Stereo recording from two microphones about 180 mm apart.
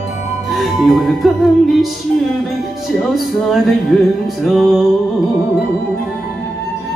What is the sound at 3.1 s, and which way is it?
Music, centre (ahead or behind).